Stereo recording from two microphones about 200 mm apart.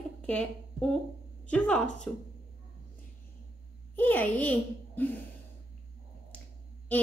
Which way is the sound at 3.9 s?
10° left (ahead or behind).